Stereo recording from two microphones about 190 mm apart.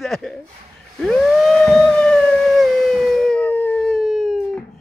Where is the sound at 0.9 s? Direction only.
Centre (ahead or behind).